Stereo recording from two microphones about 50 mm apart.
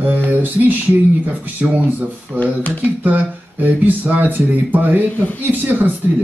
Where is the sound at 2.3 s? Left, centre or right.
Right.